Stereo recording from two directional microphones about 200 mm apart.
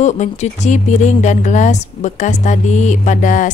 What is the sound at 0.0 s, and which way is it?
Speech, 35° left (ahead or behind).